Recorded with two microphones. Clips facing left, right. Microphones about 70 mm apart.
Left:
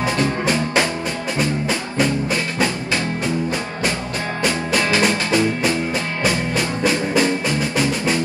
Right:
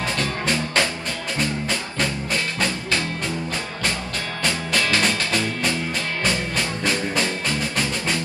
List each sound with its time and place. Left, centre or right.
0.2 s music: left
4.7 s music: left